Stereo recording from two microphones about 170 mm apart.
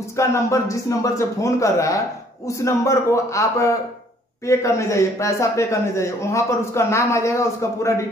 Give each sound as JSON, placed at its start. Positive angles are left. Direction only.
{"t": 0.1, "sound": "a man's voice", "side_deg": 15}